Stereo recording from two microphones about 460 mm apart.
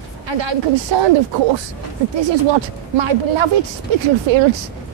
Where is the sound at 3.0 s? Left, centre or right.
Right.